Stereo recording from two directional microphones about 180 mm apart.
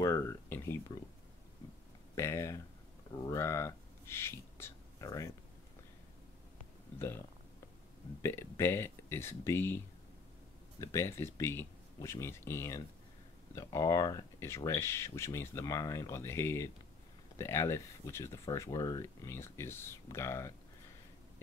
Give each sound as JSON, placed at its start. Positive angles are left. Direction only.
{"t": 0.0, "sound": "a sound", "side_deg": 15}
{"t": 2.1, "sound": "speech", "side_deg": 15}
{"t": 8.2, "sound": "speech", "side_deg": 15}
{"t": 10.8, "sound": "speech", "side_deg": 15}